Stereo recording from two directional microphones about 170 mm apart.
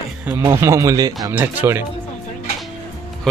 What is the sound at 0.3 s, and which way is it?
Speech, 15° right (ahead or behind).